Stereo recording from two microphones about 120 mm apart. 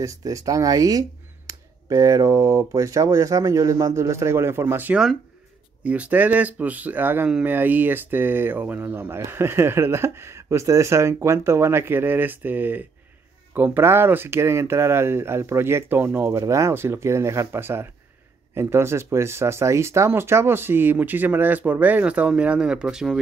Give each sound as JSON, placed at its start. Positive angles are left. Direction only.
{"t": 0.0, "sound": "speech", "side_deg": -30}